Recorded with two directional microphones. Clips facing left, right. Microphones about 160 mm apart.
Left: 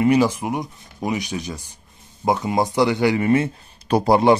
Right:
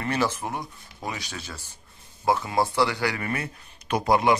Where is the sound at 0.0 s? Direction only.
15° left (ahead or behind).